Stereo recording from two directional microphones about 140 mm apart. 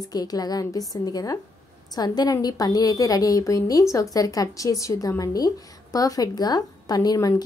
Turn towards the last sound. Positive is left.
turn(degrees=25)  # may be behind; listen again after turning